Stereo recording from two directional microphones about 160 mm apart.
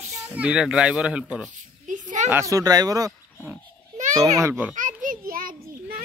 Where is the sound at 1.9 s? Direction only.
50° right (ahead or behind).